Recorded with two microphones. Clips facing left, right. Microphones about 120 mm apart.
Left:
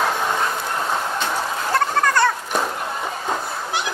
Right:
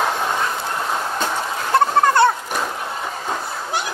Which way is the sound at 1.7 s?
25° right (ahead or behind).